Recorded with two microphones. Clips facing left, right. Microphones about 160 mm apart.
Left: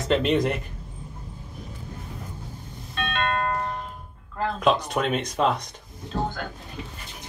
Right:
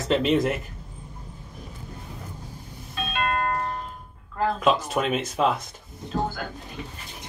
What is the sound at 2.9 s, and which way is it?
Music, 5° right (ahead or behind).